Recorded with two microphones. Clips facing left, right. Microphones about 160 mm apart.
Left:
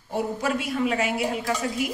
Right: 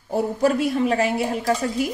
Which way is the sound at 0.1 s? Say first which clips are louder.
Right 6 dB; 40° right (ahead or behind).